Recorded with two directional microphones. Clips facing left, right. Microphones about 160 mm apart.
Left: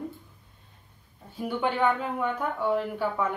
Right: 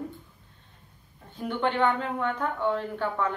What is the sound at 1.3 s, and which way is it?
Speech, 10° left (ahead or behind).